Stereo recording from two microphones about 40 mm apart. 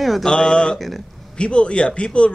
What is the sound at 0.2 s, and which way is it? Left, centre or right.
Speech, centre.